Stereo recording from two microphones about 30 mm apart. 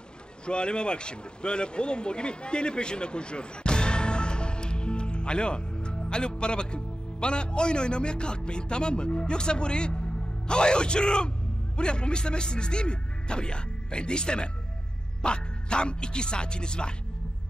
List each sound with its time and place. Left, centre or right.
0.5 s speech: left